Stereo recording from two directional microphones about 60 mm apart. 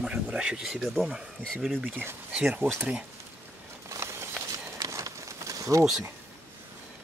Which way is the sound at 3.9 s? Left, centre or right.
Right.